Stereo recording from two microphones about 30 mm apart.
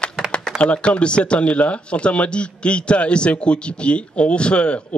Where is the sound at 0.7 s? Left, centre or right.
Left.